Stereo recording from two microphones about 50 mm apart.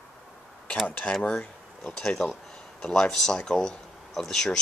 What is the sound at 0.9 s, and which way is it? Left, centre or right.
Speech, left.